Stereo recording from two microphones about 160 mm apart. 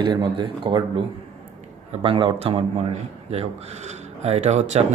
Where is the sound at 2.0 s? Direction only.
35° right (ahead or behind).